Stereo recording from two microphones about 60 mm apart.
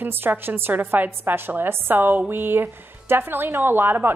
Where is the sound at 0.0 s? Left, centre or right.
Right.